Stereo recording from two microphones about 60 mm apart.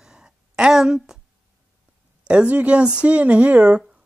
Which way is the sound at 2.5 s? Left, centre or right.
Right.